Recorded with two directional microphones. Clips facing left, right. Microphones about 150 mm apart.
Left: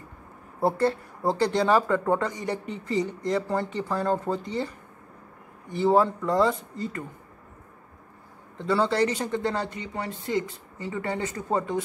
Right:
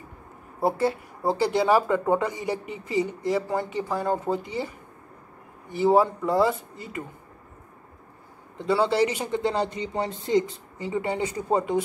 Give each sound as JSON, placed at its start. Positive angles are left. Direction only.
{"t": 0.6, "sound": "speech", "side_deg": -5}
{"t": 5.7, "sound": "speech", "side_deg": -10}
{"t": 8.5, "sound": "speech", "side_deg": -15}